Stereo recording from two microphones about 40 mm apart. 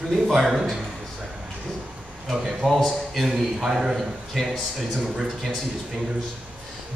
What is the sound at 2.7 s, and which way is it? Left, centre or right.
A man's voice, centre.